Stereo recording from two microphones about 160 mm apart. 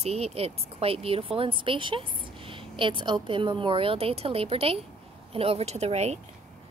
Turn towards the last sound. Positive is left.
turn(degrees=-45)  # may be behind; listen again after turning